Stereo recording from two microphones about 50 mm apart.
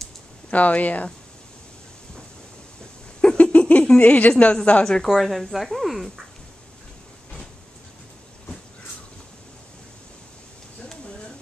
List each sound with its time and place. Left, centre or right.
0.5 s speech: left
3.2 s speech: centre
5.0 s speech: centre